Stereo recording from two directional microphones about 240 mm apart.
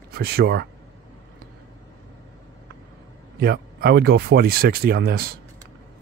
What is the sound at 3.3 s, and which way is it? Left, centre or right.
Speech, right.